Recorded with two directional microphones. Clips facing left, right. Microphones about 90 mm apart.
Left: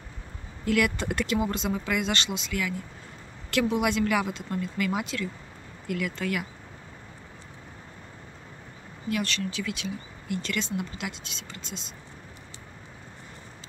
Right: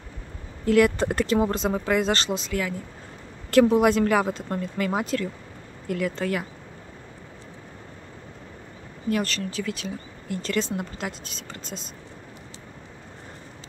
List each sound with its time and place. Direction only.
0.7 s speech: 35° right (ahead or behind)
9.1 s speech: 40° right (ahead or behind)